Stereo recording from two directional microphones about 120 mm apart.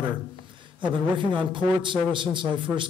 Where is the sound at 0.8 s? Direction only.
45° right (ahead or behind).